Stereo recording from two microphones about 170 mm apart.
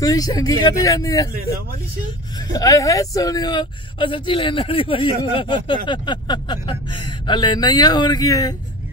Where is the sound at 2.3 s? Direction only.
20° left (ahead or behind).